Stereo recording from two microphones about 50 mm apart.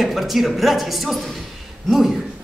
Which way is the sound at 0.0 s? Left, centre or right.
Centre.